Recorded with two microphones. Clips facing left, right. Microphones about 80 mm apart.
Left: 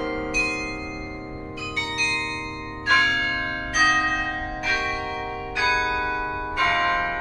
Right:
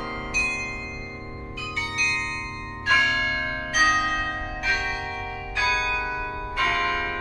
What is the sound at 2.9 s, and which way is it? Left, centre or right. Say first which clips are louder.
Change ringing: left 1 dB; centre.